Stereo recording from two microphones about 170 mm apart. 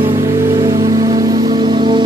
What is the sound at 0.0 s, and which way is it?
Music, 20° right (ahead or behind).